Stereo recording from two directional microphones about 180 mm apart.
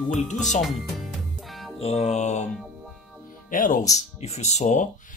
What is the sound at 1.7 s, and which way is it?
Speech, 35° left (ahead or behind).